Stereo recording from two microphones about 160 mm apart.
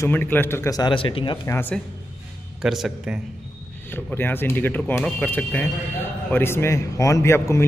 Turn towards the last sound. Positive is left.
turn(degrees=15)  # may be behind; listen again after turning